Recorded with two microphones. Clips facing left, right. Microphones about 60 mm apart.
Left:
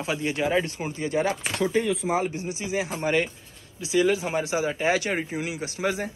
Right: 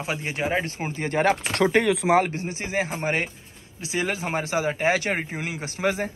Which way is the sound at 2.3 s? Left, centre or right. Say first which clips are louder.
Right 1 dB; right.